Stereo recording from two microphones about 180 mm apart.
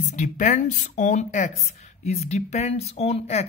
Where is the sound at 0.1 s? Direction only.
40° left (ahead or behind).